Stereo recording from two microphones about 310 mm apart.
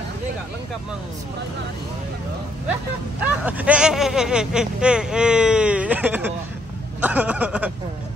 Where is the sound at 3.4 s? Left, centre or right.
Centre.